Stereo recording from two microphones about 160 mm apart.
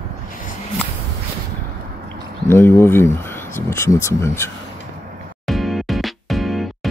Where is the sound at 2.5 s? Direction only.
15° left (ahead or behind).